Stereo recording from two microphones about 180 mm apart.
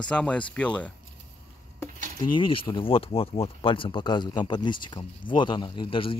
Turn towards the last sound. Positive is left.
turn(degrees=25)  # may be behind; listen again after turning